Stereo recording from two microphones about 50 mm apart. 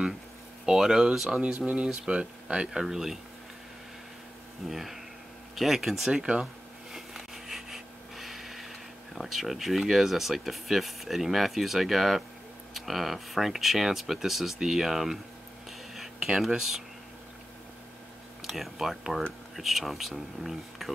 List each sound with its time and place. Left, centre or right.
0.7 s speech: centre
1.3 s speech: centre
2.7 s speech: centre
4.6 s speech: centre
6.4 s a sound: centre
12.7 s speech: centre
15.9 s a sound: centre
18.4 s speech: centre